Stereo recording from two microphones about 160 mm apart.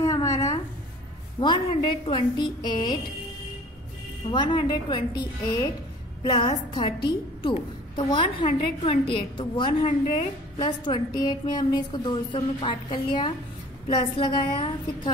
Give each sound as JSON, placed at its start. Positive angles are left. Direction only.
{"t": 0.0, "sound": "a sound", "side_deg": 20}
{"t": 1.4, "sound": "a woman's voice", "side_deg": 30}
{"t": 4.3, "sound": "a woman's voice", "side_deg": 30}